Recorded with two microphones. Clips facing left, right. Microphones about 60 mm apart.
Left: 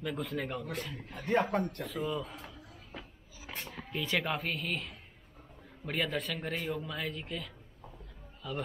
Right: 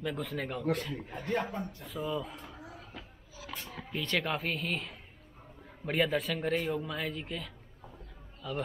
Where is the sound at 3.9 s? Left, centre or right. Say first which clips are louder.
Even; centre.